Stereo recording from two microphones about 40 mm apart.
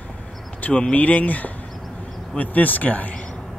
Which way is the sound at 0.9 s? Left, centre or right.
Left.